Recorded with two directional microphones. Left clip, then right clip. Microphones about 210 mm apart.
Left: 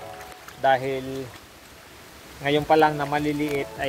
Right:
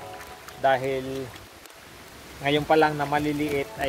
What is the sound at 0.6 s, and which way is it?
Speech, 30° left (ahead or behind).